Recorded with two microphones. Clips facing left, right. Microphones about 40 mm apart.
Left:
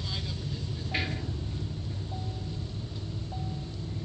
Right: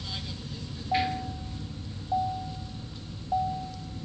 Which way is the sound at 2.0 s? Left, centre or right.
Centre.